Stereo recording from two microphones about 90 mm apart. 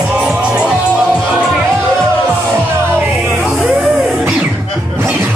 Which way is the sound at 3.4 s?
5° right (ahead or behind).